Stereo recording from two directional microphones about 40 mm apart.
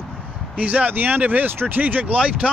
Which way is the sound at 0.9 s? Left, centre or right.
Right.